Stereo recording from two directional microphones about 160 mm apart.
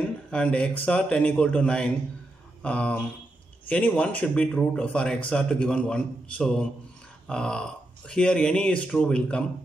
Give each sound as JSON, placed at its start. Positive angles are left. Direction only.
{"t": 0.3, "sound": "speech", "side_deg": 5}